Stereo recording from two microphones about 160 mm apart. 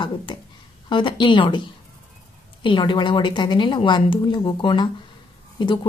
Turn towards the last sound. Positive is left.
turn(degrees=30)  # may be behind; listen again after turning